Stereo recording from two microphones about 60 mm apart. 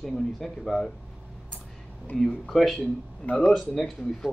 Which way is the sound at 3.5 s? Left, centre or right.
Centre.